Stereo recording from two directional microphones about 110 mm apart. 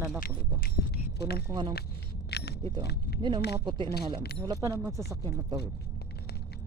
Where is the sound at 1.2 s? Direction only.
40° right (ahead or behind).